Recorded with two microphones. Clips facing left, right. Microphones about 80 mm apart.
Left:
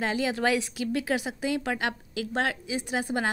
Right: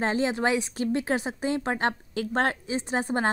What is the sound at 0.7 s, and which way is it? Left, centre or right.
A woman's voice, right.